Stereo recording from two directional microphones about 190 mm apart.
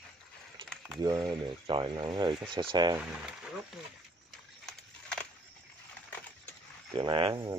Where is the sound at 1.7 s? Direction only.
25° right (ahead or behind).